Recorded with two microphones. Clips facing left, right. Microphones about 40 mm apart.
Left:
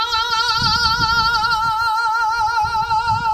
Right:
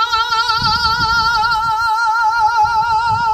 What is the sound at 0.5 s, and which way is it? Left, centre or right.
Music, centre.